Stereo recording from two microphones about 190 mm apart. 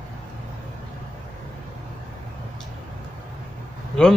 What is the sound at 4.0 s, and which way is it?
Speech, 5° left (ahead or behind).